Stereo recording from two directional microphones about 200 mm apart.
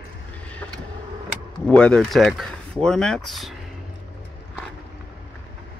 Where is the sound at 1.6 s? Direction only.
5° left (ahead or behind).